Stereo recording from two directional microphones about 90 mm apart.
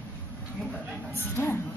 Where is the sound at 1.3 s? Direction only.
25° left (ahead or behind).